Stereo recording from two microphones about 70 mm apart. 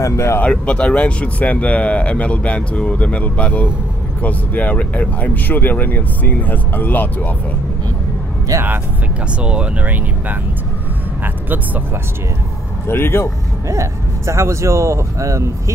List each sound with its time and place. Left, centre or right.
0.0 s speech: left
0.4 s speech: centre
9.4 s speech: centre
12.8 s speech: left
13.7 s speech: right